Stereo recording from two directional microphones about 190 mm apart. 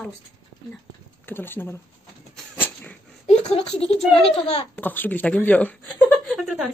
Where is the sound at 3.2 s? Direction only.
35° left (ahead or behind).